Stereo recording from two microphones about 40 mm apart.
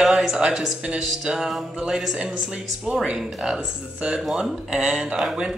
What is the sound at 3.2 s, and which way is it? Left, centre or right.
Speech, centre.